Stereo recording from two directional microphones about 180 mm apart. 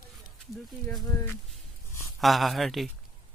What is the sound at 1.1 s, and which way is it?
Speech, 15° left (ahead or behind).